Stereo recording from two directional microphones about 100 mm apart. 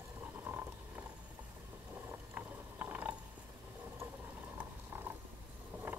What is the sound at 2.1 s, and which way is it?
Mechanisms, 20° right (ahead or behind).